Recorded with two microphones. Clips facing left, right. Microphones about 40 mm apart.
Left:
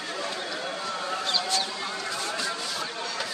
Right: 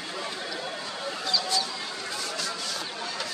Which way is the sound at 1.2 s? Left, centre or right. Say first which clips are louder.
Right 1 dB; left.